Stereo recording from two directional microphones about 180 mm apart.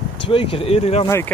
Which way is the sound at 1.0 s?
15° left (ahead or behind).